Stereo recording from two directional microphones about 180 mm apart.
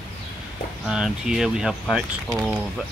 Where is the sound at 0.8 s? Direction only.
5° right (ahead or behind).